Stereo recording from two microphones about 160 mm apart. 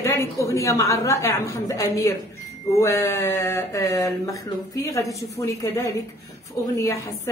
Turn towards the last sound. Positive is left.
turn(degrees=15)  # may be behind; listen again after turning